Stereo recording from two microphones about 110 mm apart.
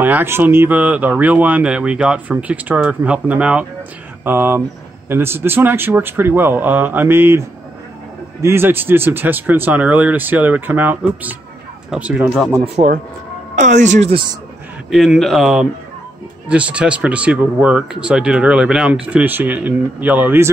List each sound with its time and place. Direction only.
0.0 s speech: 20° right (ahead or behind)
12.8 s speech: 65° right (ahead or behind)
13.7 s speech: 90° right
14.9 s speech: centre (ahead or behind); by 20.5 s 20° right (ahead or behind)